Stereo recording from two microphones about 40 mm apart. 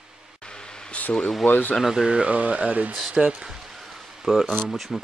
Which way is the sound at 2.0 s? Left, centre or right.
Right.